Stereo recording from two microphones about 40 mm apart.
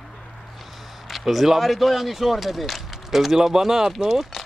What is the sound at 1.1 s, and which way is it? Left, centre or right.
Speech, centre.